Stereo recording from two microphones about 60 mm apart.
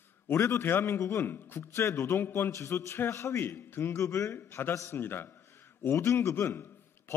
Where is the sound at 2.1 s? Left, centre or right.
Left.